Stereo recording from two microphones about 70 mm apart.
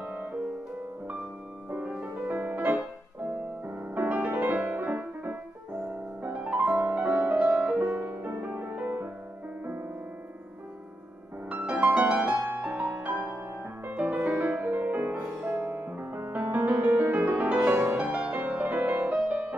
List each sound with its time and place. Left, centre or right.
0.0 s music: right
1.7 s music: right
11.4 s music: right